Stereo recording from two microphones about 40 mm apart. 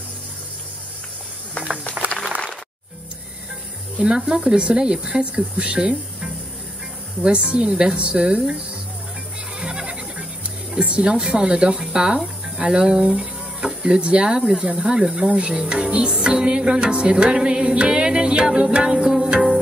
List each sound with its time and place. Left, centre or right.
1.9 s a sound: left
4.0 s music: centre
9.6 s goat: right
10.8 s speech: right
13.8 s music: right